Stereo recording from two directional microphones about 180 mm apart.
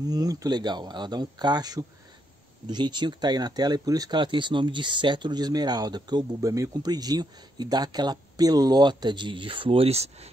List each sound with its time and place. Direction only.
0.0 s speech: 20° right (ahead or behind); by 10.3 s 35° right (ahead or behind)